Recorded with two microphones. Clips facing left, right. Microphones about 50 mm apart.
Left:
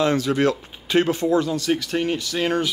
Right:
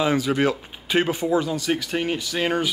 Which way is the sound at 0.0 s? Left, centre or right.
Centre.